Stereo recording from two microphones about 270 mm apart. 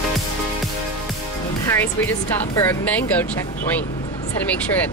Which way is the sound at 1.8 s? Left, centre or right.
Centre.